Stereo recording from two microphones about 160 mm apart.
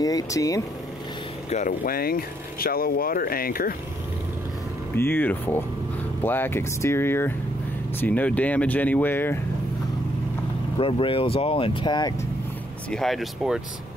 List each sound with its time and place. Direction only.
0.0 s speech: 20° left (ahead or behind)
1.9 s speech: 70° left (ahead or behind)
4.9 s speech: 15° left (ahead or behind)
10.8 s speech: 35° left (ahead or behind)
12.9 s speech: centre (ahead or behind)